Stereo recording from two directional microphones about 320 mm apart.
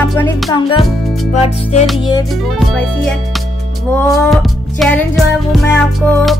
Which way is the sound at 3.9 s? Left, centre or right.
Centre.